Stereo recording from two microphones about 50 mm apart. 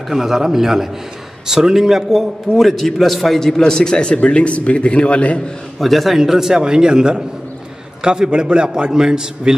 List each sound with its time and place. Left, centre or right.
0.1 s a man's voice: centre
2.5 s a man's voice: centre; by 5.4 s left
5.8 s a man's voice: centre